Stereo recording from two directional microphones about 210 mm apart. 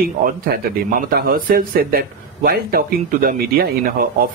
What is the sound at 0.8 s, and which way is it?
Speech, 40° right (ahead or behind).